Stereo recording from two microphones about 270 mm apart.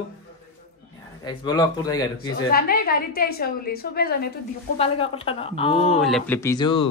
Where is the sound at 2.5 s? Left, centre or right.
Left.